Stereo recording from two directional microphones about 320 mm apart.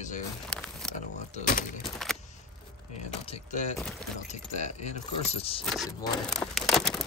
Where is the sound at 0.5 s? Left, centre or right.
Centre.